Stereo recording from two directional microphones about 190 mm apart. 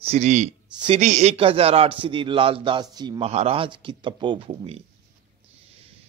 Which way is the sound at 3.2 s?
30° right (ahead or behind).